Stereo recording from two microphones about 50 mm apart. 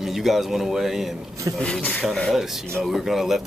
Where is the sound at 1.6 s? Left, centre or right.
Left.